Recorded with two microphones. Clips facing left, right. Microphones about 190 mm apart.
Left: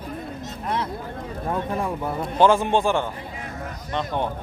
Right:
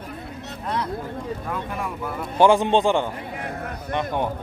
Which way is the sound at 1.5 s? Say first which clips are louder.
Left 9 dB; 30° left (ahead or behind).